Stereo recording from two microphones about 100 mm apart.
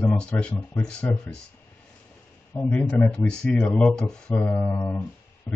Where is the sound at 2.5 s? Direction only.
15° left (ahead or behind).